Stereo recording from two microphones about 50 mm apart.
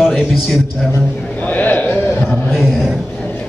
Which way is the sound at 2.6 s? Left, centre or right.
Centre.